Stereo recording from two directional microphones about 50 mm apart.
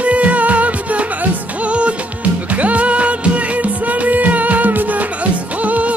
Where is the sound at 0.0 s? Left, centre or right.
Right.